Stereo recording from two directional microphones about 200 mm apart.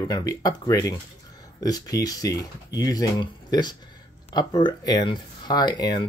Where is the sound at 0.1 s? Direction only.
20° left (ahead or behind).